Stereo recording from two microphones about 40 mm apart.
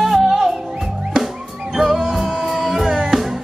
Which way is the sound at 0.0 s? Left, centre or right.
Centre.